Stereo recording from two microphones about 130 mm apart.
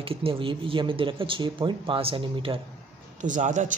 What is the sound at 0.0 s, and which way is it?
Speech, 45° right (ahead or behind).